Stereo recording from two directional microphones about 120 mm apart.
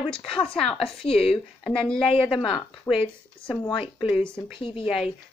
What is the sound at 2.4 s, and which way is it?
Speech, 40° left (ahead or behind).